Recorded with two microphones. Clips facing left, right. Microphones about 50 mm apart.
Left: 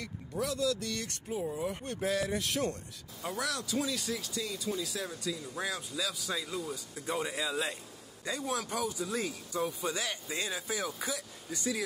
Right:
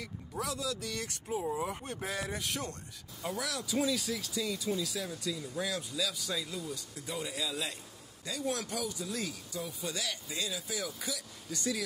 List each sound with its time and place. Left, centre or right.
0.0 s speech: centre
5.3 s speech: centre
5.7 s speech: centre
6.3 s speech: centre
7.1 s speech: left
9.5 s speech: left
9.8 s speech: left
11.5 s speech: centre